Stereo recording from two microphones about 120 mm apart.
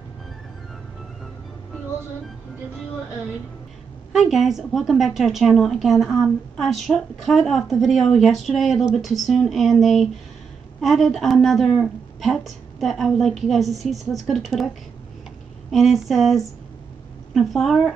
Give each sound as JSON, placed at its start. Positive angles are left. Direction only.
{"t": 4.1, "sound": "speech", "side_deg": 0}
{"t": 15.7, "sound": "speech", "side_deg": 0}